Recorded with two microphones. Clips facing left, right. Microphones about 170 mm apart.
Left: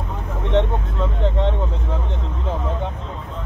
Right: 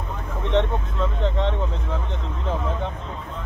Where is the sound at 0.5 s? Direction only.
10° left (ahead or behind).